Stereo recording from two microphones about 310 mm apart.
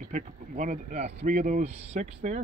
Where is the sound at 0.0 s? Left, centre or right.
Right.